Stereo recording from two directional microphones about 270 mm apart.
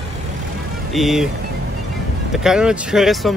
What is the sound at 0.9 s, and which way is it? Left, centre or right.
Speech, centre.